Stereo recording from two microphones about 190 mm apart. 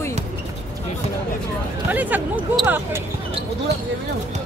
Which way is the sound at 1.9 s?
10° right (ahead or behind).